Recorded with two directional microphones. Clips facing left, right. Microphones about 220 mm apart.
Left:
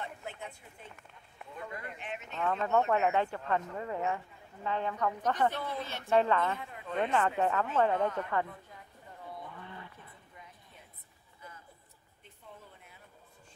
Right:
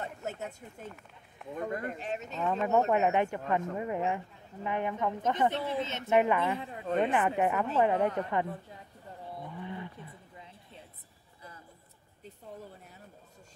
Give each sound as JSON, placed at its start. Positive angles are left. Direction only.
{"t": 0.0, "sound": "speech", "side_deg": -40}
{"t": 2.9, "sound": "a woman's voice", "side_deg": -20}
{"t": 6.6, "sound": "a woman's voice", "side_deg": -30}
{"t": 7.0, "sound": "speech", "side_deg": -15}
{"t": 9.6, "sound": "a sound", "side_deg": -15}
{"t": 12.2, "sound": "a sound", "side_deg": -40}